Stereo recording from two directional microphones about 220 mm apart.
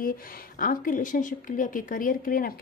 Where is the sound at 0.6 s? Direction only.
40° left (ahead or behind).